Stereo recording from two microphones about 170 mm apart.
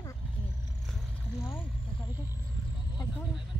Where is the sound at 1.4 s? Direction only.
15° left (ahead or behind).